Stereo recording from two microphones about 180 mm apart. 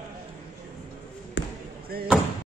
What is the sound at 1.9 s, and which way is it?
Slam, 60° right (ahead or behind).